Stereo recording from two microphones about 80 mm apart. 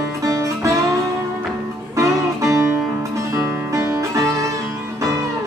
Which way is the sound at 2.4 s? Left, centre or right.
Right.